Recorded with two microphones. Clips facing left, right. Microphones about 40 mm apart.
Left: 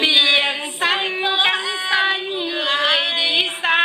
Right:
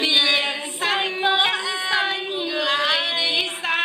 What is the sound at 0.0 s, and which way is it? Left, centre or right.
Female singing, left.